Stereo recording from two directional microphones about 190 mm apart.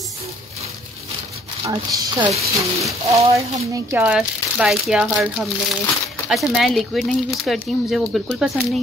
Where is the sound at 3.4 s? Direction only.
15° right (ahead or behind); by 8.8 s centre (ahead or behind).